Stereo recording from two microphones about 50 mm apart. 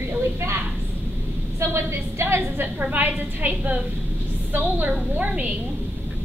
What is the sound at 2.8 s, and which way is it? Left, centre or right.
A woman's voice, right.